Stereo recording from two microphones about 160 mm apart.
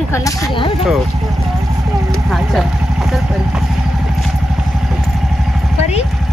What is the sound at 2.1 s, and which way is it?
Vehicle, centre (ahead or behind).